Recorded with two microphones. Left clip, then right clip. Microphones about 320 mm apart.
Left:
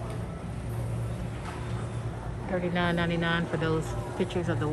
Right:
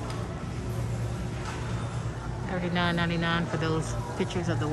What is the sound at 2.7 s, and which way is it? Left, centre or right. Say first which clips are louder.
Speech: right 2 dB; centre.